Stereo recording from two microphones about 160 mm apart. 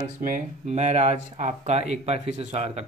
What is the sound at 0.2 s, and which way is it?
A man's voice, 50° right (ahead or behind).